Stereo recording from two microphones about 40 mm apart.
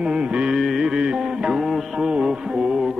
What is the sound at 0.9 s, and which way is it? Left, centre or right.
Music, right.